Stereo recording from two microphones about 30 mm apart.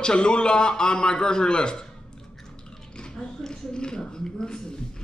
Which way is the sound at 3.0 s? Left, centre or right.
Centre.